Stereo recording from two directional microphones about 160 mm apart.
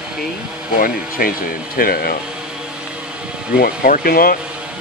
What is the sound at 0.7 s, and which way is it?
Speech, 65° left (ahead or behind).